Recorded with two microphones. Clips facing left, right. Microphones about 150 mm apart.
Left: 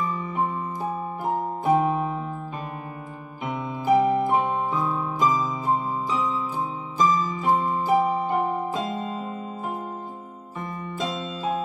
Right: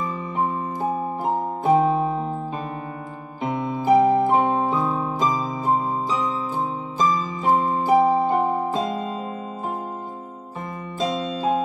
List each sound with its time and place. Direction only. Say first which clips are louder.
1.2 s music: right 1 dB; 30° right (ahead or behind)
3.4 s music: right 3 dB; 35° right (ahead or behind)
7.1 s music: right 2 dB; 35° right (ahead or behind)
7.6 s music: right 4 dB; 25° right (ahead or behind)
11.0 s music: right 6 dB; 35° right (ahead or behind)